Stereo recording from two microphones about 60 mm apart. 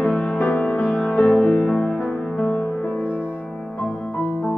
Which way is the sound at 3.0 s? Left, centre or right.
Left.